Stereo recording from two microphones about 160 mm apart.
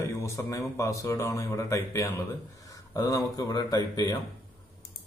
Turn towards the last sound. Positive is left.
turn(degrees=25)  # may be behind; listen again after turning